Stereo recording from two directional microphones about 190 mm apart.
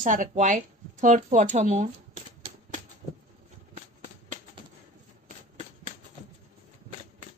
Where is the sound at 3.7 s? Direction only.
40° right (ahead or behind).